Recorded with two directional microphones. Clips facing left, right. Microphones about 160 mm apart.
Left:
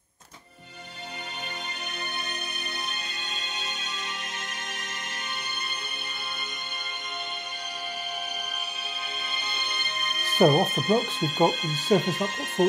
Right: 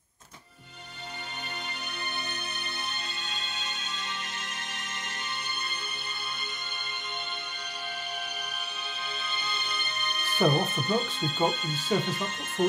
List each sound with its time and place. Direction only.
10.3 s speech: 40° left (ahead or behind)